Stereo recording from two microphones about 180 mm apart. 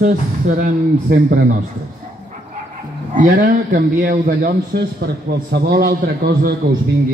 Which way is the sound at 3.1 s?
50° right (ahead or behind).